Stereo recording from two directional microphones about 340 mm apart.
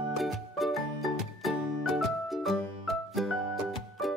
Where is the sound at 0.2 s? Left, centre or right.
Centre.